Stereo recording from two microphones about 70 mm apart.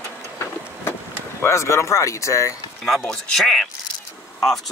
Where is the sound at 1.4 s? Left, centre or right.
Left.